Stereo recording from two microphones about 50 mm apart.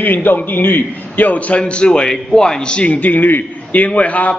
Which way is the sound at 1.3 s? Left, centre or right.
Left.